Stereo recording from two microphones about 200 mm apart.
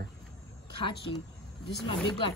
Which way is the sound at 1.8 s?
25° left (ahead or behind).